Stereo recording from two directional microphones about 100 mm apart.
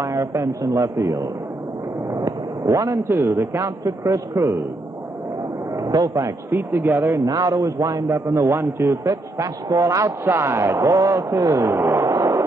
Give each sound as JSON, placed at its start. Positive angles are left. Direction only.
{"t": 0.0, "sound": "a man's voice", "side_deg": -30}
{"t": 5.8, "sound": "speech", "side_deg": -35}
{"t": 7.2, "sound": "a man's voice", "side_deg": -35}